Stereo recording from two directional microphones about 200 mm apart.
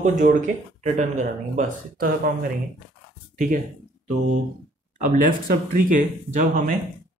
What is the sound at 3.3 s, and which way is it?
Speech, 40° right (ahead or behind).